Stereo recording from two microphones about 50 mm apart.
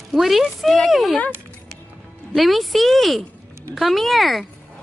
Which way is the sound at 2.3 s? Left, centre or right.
Centre.